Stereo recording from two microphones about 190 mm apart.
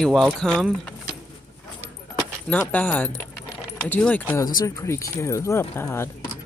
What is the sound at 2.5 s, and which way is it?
Speech, 10° left (ahead or behind).